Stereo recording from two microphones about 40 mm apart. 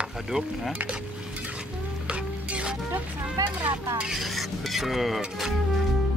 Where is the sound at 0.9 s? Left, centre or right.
Right.